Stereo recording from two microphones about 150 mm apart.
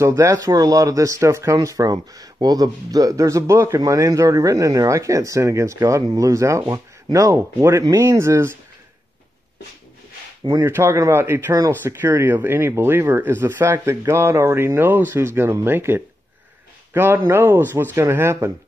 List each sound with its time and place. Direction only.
0.0 s speech: 20° right (ahead or behind)
10.6 s speech: 15° right (ahead or behind)